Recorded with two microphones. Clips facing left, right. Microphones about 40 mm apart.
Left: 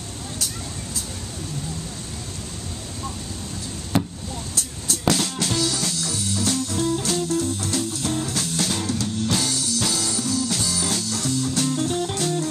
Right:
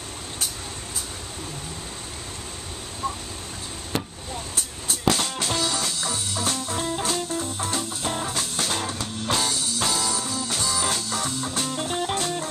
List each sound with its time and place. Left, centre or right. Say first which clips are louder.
4.6 s music: left 2 dB; right
5.1 s music: left 2 dB; centre
5.6 s music: left 1 dB; centre
8.4 s music: left 2 dB; centre; by 10.5 s right
10.5 s music: left 1 dB; centre
10.8 s music: even; right
11.5 s music: left 4 dB; centre